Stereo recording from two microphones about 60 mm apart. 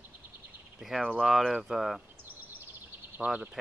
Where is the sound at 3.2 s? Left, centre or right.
Centre.